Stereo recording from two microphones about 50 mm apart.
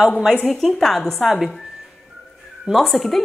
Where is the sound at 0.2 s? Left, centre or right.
Centre.